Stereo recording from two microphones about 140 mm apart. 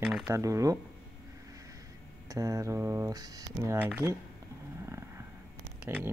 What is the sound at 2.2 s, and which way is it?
Speech, 25° right (ahead or behind).